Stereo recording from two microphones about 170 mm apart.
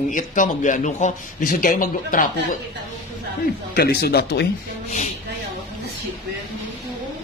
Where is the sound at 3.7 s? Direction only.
65° left (ahead or behind).